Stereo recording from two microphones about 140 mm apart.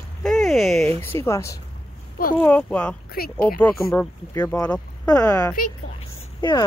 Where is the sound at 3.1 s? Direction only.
90° left.